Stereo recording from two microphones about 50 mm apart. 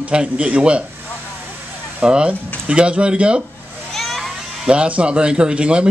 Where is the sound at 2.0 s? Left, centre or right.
Centre.